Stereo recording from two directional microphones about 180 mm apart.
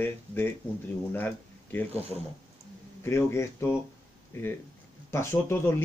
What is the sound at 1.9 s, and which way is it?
Speech, 35° right (ahead or behind).